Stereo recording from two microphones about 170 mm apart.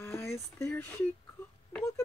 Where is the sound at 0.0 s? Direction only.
15° left (ahead or behind).